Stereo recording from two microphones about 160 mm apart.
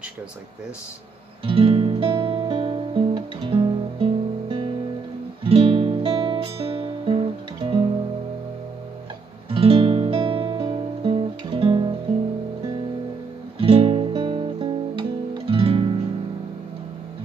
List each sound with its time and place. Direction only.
1.4 s music: 35° right (ahead or behind)
2.0 s guitar: 30° right (ahead or behind)
9.5 s guitar: 35° right (ahead or behind)
13.6 s guitar: 35° right (ahead or behind)